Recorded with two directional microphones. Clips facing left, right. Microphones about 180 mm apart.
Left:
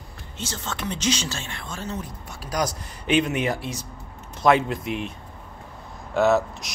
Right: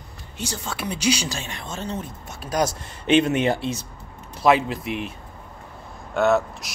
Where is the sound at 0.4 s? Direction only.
15° right (ahead or behind).